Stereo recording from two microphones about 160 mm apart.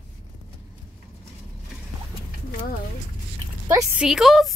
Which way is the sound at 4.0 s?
Centre (ahead or behind).